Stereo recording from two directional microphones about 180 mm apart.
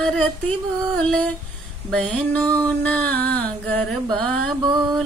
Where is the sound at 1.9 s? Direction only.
5° left (ahead or behind).